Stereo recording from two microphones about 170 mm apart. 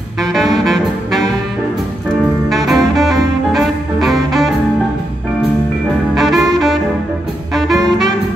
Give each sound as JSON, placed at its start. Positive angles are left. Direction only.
{"t": 0.3, "sound": "saxophone", "side_deg": 0}
{"t": 2.5, "sound": "music", "side_deg": 0}
{"t": 6.1, "sound": "saxophone", "side_deg": 0}
{"t": 7.5, "sound": "music", "side_deg": 0}